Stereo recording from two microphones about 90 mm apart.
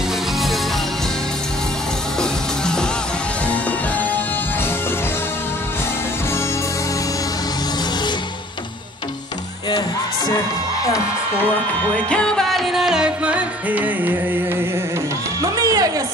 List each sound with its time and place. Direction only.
2.1 s music: 10° left (ahead or behind)
9.7 s music: 55° left (ahead or behind)
11.3 s music: 20° left (ahead or behind); by 14.1 s 20° right (ahead or behind)
15.4 s music: 40° right (ahead or behind)